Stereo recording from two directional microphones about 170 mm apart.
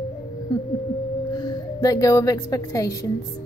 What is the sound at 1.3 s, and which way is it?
A woman's voice, 25° left (ahead or behind).